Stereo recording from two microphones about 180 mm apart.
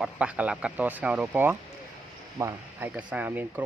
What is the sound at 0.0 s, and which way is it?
Speech, 5° right (ahead or behind).